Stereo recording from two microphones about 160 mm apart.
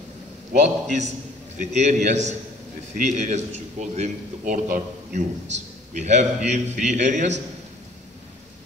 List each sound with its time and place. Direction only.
0.5 s a man's voice: 50° right (ahead or behind)